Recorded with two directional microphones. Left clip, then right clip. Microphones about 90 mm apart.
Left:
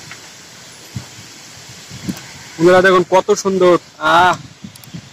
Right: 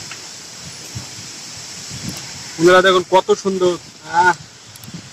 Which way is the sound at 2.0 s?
30° left (ahead or behind).